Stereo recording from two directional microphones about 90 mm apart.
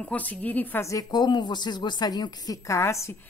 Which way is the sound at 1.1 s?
55° left (ahead or behind).